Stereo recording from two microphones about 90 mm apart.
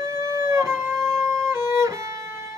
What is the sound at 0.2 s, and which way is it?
Music, 30° right (ahead or behind).